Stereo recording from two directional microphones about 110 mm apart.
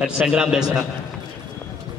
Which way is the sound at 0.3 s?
5° right (ahead or behind).